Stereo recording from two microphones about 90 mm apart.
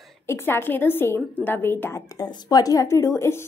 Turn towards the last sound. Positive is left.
turn(degrees=30)  # may be behind; listen again after turning